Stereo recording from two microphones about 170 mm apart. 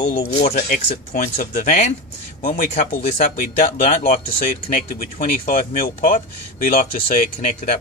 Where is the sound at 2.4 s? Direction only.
60° left (ahead or behind).